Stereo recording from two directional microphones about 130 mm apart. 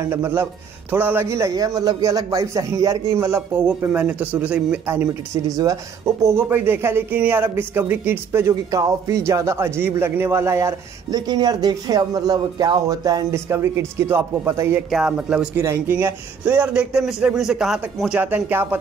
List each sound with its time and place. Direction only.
0.1 s a man's voice: 20° right (ahead or behind)
14.9 s a man's voice: 5° right (ahead or behind)